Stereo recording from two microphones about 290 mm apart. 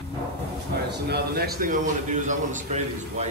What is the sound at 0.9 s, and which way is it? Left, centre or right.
A man's voice, right.